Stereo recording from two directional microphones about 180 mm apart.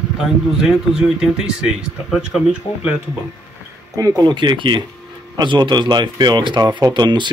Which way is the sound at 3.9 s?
20° right (ahead or behind).